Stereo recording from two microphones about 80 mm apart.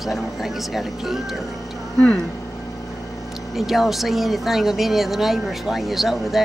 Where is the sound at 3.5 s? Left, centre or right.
Centre.